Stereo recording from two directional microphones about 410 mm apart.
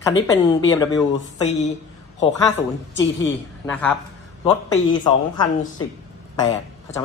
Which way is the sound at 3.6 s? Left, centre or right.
Centre.